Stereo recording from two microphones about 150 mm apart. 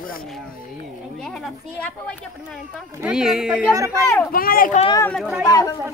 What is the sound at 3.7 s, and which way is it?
Speech, 20° right (ahead or behind).